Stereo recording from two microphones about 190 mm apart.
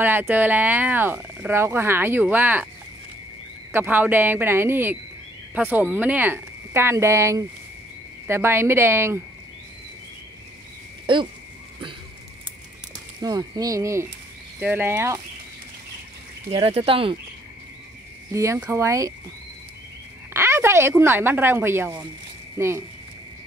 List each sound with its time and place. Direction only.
0.0 s speech: 10° right (ahead or behind)
3.7 s speech: 10° right (ahead or behind)
11.1 s speech: 25° right (ahead or behind)
13.2 s speech: 20° right (ahead or behind)
16.5 s speech: 30° right (ahead or behind)
18.3 s speech: 15° right (ahead or behind)
20.3 s speech: 15° right (ahead or behind)